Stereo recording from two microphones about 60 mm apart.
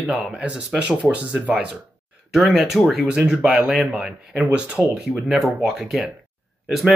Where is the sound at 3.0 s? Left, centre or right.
Centre.